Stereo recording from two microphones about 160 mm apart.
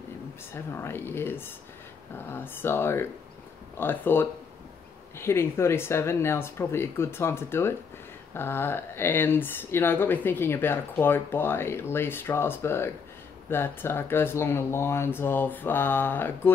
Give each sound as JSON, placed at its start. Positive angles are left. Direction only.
{"t": 0.7, "sound": "speech", "side_deg": 15}